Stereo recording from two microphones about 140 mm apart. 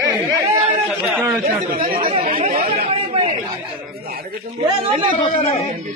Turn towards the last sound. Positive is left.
turn(degrees=45)  # may be behind; listen again after turning